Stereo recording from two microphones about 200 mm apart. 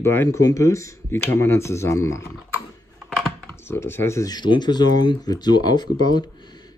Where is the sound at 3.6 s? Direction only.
10° left (ahead or behind).